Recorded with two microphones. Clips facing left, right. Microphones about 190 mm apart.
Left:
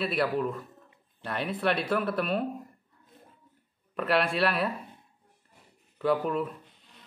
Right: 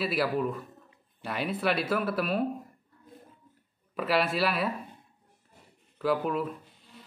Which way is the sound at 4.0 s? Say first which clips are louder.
Left 1 dB; centre (ahead or behind).